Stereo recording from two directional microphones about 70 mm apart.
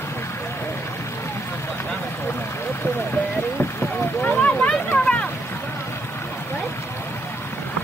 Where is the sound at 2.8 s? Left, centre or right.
Left.